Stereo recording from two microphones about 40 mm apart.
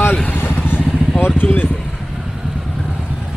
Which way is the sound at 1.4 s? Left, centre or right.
Left.